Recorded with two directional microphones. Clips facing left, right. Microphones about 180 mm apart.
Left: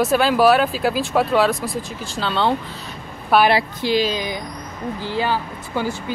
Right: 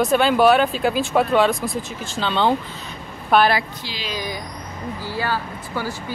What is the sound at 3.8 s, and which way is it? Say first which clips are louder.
Speech: left 14 dB; 55° left (ahead or behind).